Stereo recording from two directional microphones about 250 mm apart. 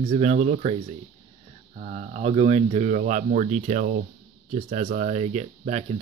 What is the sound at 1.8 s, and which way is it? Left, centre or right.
Speech, right.